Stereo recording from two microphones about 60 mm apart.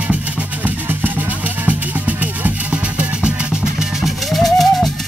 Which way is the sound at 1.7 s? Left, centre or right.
Right.